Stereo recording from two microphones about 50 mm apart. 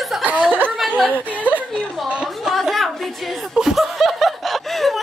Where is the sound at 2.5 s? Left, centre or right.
Centre.